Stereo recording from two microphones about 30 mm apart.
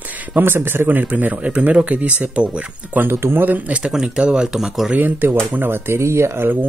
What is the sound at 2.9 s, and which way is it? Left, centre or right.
Speech, right.